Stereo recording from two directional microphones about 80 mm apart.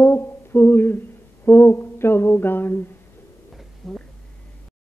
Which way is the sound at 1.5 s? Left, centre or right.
Left.